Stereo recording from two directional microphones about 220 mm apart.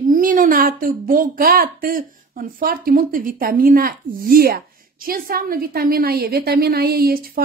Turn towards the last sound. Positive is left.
turn(degrees=-45)  # may be behind; listen again after turning